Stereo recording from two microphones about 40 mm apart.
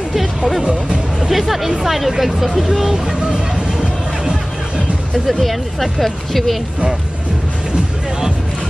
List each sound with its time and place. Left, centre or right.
0.7 s speech: right
1.3 s speech: centre
4.2 s music: centre
5.1 s speech: centre